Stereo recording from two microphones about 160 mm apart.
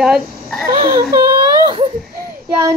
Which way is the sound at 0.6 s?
65° right (ahead or behind).